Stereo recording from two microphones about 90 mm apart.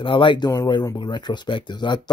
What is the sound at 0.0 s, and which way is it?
Speech, 65° left (ahead or behind).